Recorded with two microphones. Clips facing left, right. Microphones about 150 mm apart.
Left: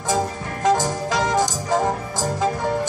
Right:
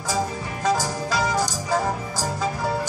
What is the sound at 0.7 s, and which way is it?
Music, 20° left (ahead or behind).